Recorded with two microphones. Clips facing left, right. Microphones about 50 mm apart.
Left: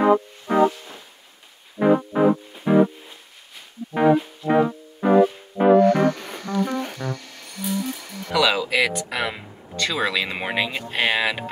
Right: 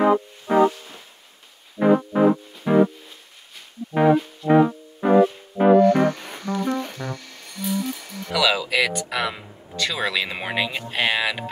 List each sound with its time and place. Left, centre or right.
0.0 s music: centre
1.8 s music: centre
9.8 s speech: centre